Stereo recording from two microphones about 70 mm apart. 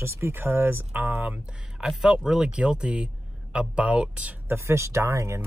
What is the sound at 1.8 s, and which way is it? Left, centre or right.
Speech, centre.